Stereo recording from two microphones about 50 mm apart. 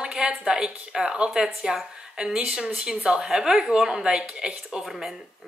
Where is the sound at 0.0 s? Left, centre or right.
Centre.